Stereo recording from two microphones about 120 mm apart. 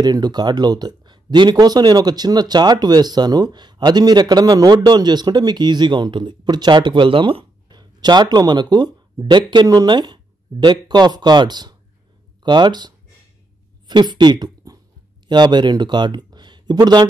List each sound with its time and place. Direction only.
0.0 s speech: 35° right (ahead or behind)